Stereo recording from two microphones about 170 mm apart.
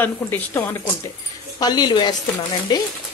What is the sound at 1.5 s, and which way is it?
Speech, 25° left (ahead or behind).